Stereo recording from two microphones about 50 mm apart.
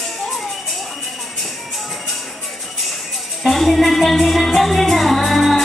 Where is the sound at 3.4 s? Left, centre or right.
Centre.